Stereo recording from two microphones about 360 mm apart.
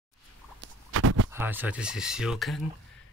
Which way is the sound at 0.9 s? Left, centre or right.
Right.